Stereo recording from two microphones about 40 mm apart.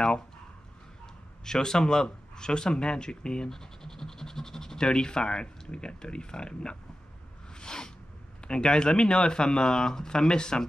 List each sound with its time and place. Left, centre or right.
1.4 s a man's voice: centre
7.5 s a sound: centre
8.5 s speech: left